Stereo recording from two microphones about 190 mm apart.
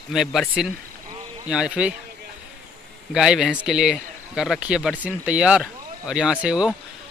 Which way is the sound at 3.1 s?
5° right (ahead or behind).